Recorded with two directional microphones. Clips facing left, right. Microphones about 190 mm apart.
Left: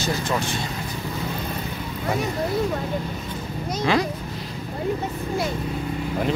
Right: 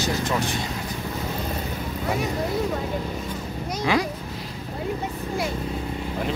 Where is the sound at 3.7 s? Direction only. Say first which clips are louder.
Left 2 dB; 10° right (ahead or behind).